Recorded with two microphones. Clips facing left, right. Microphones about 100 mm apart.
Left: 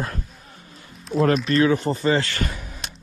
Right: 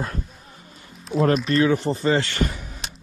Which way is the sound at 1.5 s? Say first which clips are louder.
Left 1 dB; 40° left (ahead or behind).